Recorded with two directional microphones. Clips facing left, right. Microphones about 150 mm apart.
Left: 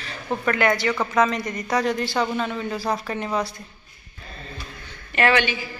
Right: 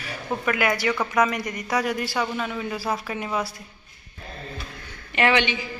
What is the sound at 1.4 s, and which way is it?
Speech, 30° left (ahead or behind).